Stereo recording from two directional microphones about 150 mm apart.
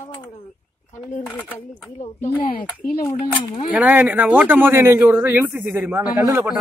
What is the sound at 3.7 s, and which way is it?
Speech, 10° right (ahead or behind).